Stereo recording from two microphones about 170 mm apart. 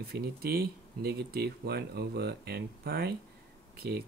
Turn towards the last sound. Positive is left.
turn(degrees=-70)  # may be behind; listen again after turning